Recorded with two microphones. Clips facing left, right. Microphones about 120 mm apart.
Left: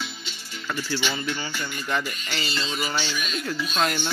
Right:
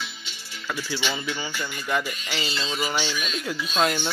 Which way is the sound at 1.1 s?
15° right (ahead or behind).